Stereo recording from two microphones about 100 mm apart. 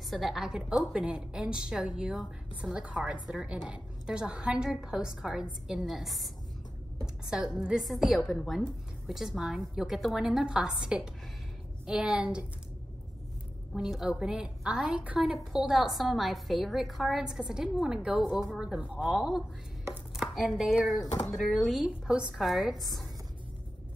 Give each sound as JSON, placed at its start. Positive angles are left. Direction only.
{"t": 0.1, "sound": "a woman's voice", "side_deg": 0}
{"t": 13.7, "sound": "a woman's voice", "side_deg": -5}